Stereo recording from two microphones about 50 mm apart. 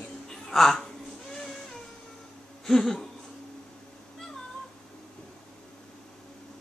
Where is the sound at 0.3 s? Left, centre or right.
Centre.